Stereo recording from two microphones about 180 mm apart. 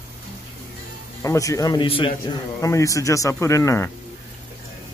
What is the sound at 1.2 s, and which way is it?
A man's voice, 20° left (ahead or behind).